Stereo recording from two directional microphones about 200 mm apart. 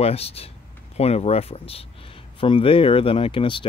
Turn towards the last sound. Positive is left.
turn(degrees=25)  # may be behind; listen again after turning